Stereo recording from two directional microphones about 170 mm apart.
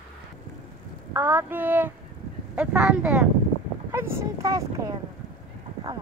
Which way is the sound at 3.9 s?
15° right (ahead or behind).